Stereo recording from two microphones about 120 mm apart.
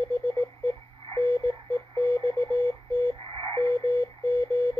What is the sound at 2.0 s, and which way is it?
Radio, 30° left (ahead or behind).